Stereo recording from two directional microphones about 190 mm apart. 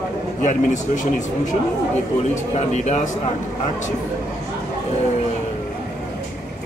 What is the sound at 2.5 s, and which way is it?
Speech, 35° left (ahead or behind).